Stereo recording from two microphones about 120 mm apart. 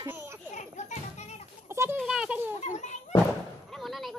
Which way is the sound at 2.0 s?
5° right (ahead or behind).